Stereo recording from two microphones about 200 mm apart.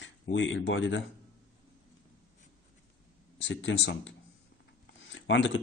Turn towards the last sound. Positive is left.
turn(degrees=70)  # may be behind; listen again after turning